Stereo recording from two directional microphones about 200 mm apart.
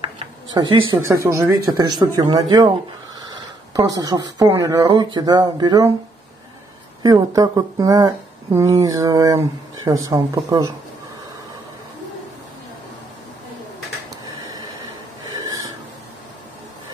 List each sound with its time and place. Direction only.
0.6 s speech: 25° right (ahead or behind)
0.9 s speech: 15° right (ahead or behind)
3.7 s speech: 20° right (ahead or behind)
7.0 s speech: 20° right (ahead or behind)
14.4 s a sound: 20° right (ahead or behind)
15.2 s wheeze: 20° right (ahead or behind)